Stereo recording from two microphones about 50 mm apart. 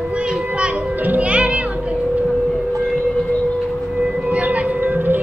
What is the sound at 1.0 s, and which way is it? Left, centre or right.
Music, right.